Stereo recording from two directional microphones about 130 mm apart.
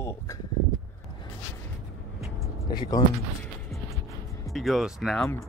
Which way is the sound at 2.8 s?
30° left (ahead or behind).